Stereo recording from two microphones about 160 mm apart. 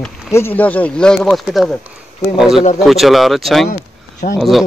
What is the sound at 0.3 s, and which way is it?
Speech, 15° left (ahead or behind).